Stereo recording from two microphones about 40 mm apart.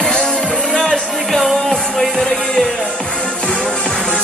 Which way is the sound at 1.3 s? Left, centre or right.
Centre.